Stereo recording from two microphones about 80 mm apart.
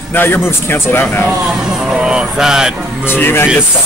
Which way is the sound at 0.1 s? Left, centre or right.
Left.